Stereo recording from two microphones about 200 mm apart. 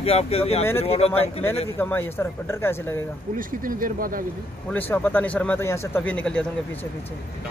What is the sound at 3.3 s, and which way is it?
Speech, 45° right (ahead or behind).